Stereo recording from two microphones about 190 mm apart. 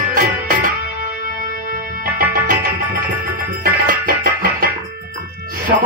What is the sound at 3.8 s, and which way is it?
Music, 45° right (ahead or behind).